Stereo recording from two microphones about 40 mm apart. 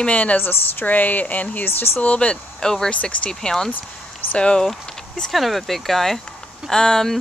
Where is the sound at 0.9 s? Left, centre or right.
Left.